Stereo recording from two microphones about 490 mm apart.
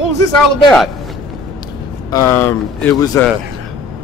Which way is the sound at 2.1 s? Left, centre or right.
Centre.